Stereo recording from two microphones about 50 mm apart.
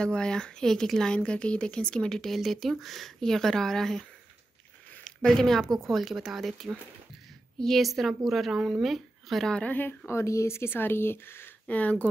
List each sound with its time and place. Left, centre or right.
0.0 s speech: centre
5.0 s speech: centre
9.6 s speech: left
10.0 s speech: left
11.6 s speech: left